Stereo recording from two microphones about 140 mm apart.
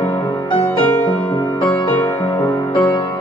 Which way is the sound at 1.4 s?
25° left (ahead or behind).